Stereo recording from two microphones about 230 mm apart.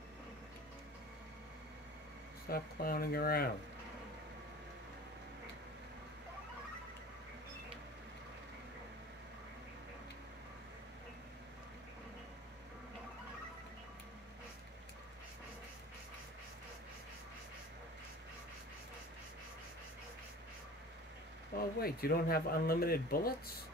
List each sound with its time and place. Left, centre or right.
2.5 s speech: left
21.7 s speech: left